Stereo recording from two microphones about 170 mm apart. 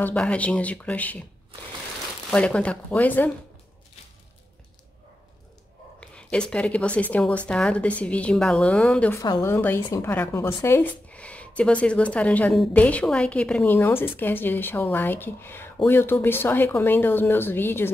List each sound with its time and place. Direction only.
0.0 s a woman's voice: 5° left (ahead or behind)
2.3 s a woman's voice: 5° left (ahead or behind)
5.9 s a woman's voice: 5° left (ahead or behind)
9.2 s a woman's voice: 20° left (ahead or behind)